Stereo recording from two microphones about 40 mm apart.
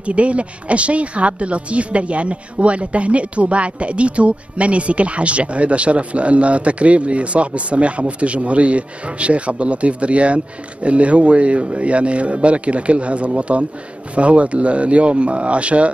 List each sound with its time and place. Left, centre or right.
0.0 s speech: right